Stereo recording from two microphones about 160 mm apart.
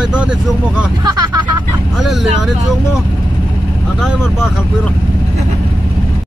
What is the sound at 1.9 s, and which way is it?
Speech, centre (ahead or behind).